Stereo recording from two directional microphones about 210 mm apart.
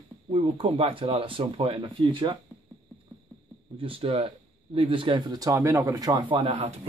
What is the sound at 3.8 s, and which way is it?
Speech, 25° right (ahead or behind).